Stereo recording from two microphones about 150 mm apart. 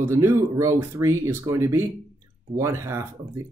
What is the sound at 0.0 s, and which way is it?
Speech, 15° right (ahead or behind).